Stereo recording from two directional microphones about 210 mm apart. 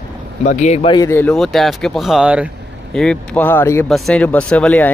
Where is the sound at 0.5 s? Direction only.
35° left (ahead or behind).